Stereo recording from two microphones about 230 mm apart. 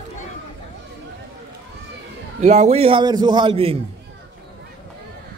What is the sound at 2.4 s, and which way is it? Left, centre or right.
A man's voice, right.